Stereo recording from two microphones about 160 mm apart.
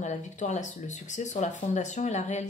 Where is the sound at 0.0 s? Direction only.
45° left (ahead or behind).